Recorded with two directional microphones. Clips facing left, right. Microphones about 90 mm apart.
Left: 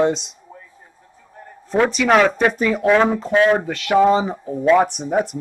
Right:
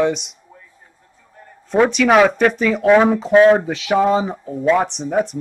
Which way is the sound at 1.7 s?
Centre (ahead or behind).